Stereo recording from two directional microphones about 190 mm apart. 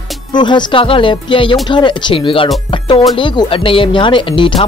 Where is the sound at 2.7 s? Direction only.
25° left (ahead or behind).